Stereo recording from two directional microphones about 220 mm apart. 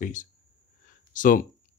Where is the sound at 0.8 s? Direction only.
40° left (ahead or behind).